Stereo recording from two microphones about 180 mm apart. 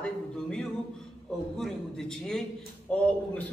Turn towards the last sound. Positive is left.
turn(degrees=5)  # may be behind; listen again after turning